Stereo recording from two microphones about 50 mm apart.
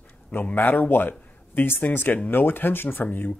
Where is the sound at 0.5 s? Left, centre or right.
Left.